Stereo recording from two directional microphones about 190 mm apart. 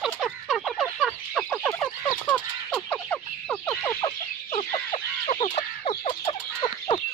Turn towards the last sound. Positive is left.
turn(degrees=25)  # may be behind; listen again after turning